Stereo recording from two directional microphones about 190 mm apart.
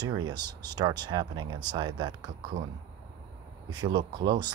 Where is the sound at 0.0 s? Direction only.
20° right (ahead or behind).